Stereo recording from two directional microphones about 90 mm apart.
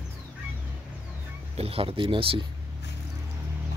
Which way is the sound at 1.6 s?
90° right.